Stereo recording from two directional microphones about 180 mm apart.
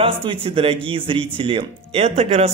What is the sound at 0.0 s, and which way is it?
Speech, 30° right (ahead or behind).